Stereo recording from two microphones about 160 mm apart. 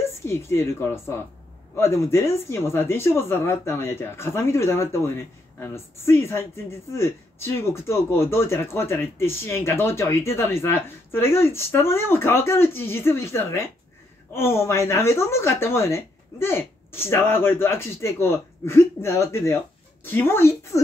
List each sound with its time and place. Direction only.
0.0 s a woman's voice: 15° left (ahead or behind)